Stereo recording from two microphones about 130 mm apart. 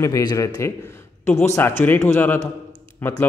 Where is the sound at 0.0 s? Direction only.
30° left (ahead or behind).